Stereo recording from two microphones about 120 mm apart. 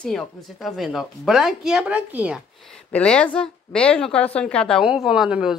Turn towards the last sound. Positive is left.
turn(degrees=-5)  # may be behind; listen again after turning